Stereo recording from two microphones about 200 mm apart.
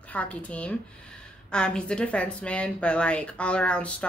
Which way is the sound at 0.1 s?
5° left (ahead or behind).